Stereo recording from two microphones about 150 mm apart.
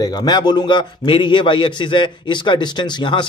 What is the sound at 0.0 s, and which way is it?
A man's voice, 25° left (ahead or behind).